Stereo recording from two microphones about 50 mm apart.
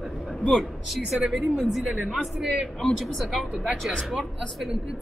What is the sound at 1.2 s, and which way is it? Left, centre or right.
Speech, centre.